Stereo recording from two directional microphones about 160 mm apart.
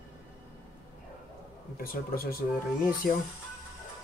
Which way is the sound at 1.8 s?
65° left (ahead or behind).